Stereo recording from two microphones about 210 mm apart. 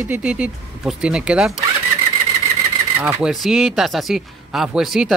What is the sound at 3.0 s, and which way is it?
Speech, 5° right (ahead or behind).